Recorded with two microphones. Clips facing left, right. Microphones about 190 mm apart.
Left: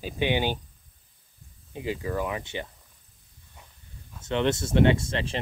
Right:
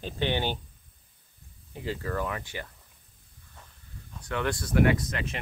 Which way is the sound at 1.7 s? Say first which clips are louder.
Left 2 dB; 15° left (ahead or behind).